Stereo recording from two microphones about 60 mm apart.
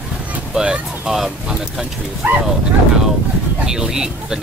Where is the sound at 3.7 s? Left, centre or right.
Centre.